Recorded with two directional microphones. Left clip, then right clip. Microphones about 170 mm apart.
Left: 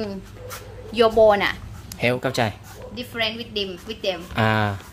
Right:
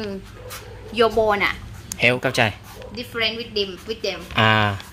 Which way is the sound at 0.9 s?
85° left.